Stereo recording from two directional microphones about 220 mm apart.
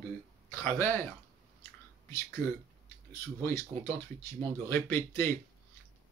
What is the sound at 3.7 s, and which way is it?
Speech, 5° left (ahead or behind).